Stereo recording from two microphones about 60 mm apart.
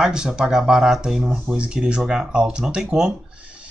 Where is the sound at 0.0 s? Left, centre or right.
Centre.